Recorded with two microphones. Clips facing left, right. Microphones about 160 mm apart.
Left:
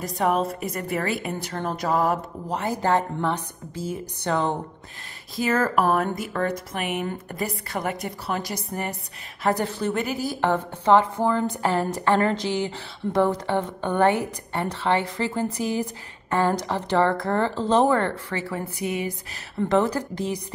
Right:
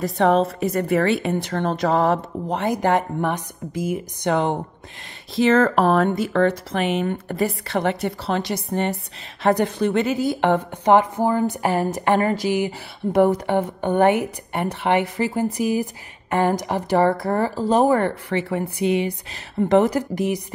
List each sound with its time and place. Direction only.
0.0 s a woman's voice: 25° right (ahead or behind)
1.5 s speech: 70° right (ahead or behind)
1.8 s a woman's voice: 25° right (ahead or behind)